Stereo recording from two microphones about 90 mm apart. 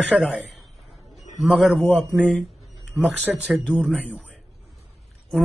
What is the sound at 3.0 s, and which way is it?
Speech, 15° right (ahead or behind).